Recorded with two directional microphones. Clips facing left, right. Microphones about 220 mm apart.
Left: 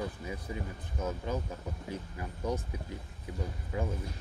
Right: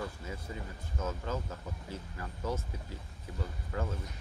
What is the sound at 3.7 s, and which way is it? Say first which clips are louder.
Speech: left 2 dB; 15° left (ahead or behind).